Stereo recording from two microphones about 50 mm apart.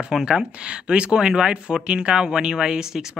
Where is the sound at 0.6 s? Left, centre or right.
Right.